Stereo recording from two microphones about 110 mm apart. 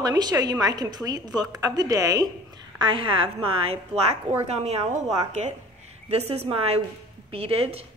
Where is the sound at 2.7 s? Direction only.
50° right (ahead or behind); by 5.5 s 90° right.